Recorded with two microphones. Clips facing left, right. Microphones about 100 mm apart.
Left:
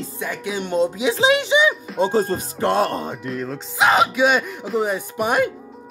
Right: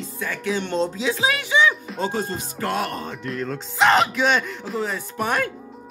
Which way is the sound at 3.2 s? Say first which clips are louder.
Left 1 dB; 5° left (ahead or behind).